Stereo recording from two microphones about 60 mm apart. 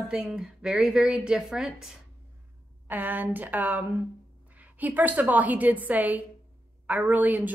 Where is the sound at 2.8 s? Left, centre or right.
Right.